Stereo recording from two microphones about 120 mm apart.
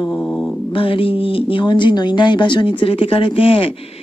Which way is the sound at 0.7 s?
50° left (ahead or behind).